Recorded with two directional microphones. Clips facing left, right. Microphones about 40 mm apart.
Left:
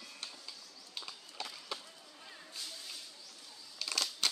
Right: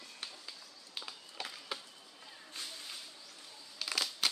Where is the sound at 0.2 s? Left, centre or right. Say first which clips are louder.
Right 3 dB; centre.